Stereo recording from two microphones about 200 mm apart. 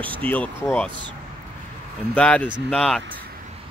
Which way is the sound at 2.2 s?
5° left (ahead or behind).